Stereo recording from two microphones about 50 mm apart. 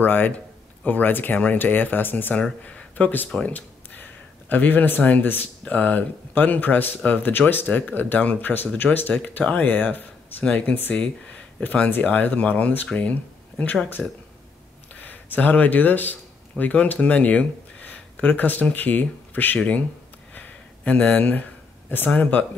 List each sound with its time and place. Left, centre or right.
0.0 s speech: left
10.4 s speech: left
10.7 s speech: left
15.0 s speech: left
20.3 s a sound: left
21.8 s speech: left
22.1 s speech: left